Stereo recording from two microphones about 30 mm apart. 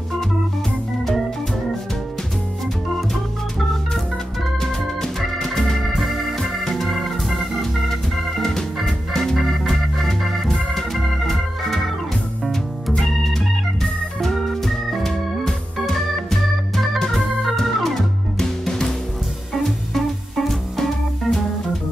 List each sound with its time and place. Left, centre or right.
4.6 s organ: centre
7.9 s organ: centre
9.1 s music: centre
10.4 s organ: centre
12.9 s organ: centre
17.7 s music: centre
18.4 s music: centre
20.4 s music: centre